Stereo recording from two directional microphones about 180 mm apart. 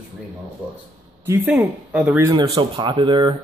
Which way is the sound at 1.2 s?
10° right (ahead or behind).